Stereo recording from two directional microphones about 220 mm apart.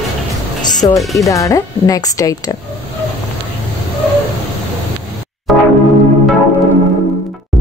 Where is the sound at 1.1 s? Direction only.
15° left (ahead or behind).